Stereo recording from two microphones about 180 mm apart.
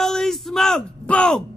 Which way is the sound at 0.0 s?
Centre (ahead or behind).